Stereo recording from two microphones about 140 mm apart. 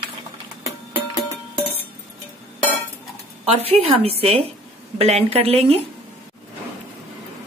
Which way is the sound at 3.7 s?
45° right (ahead or behind).